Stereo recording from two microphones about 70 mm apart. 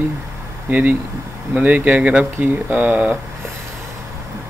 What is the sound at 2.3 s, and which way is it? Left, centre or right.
Speech, right.